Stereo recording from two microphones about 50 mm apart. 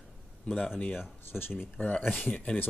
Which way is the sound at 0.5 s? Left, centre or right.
Left.